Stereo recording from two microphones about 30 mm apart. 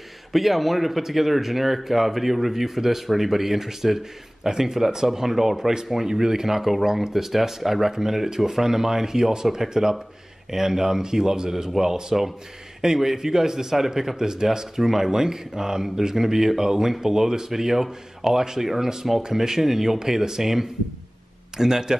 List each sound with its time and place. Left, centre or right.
0.3 s speech: centre; by 14.7 s right
14.8 s speech: centre